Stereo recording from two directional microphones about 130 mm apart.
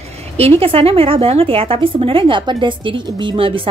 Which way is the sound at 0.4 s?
45° right (ahead or behind).